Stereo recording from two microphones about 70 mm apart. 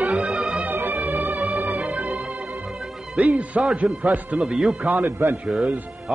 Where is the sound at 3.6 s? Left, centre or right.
Centre.